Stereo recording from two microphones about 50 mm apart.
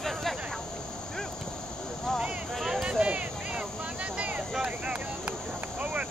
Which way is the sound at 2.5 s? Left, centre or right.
Centre.